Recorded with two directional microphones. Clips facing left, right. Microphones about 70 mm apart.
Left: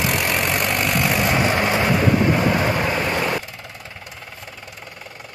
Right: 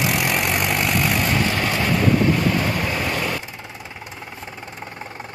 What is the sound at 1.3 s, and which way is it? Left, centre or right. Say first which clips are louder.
Vehicle: left 3 dB; left.